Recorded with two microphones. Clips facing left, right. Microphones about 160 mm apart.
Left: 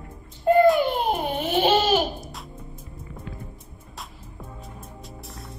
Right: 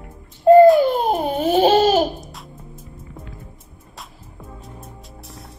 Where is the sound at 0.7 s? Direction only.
40° right (ahead or behind).